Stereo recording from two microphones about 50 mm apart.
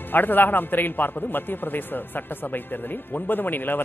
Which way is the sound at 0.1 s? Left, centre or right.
Left.